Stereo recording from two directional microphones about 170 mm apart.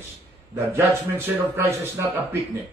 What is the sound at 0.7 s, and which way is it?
A man's voice, 15° right (ahead or behind).